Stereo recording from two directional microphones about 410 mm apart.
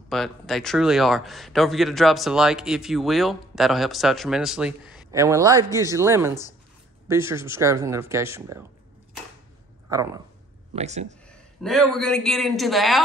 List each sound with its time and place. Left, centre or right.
0.1 s speech: centre
9.8 s speech: centre
11.2 s a man's voice: centre